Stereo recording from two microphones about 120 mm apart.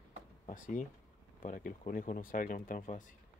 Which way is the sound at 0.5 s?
90° left.